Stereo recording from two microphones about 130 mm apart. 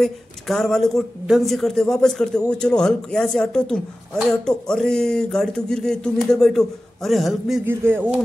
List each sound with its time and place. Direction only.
0.0 s speech: 5° left (ahead or behind)
7.6 s speech: 15° right (ahead or behind)